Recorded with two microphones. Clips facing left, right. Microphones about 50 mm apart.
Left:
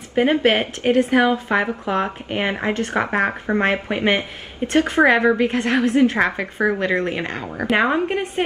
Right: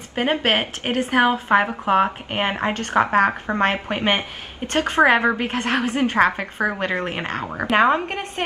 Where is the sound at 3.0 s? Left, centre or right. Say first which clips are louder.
Right 4 dB; centre.